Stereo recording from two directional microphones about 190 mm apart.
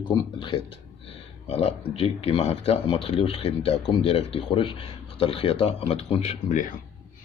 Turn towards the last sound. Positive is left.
turn(degrees=40)  # may be behind; listen again after turning